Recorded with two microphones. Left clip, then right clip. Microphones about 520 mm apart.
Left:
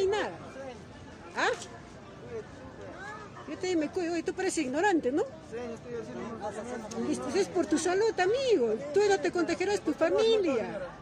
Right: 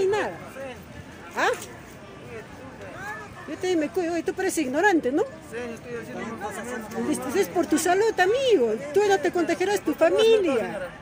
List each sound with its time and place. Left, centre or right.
0.0 s vehicle: left
1.4 s a sound: left
3.6 s speech: left
7.1 s speech: left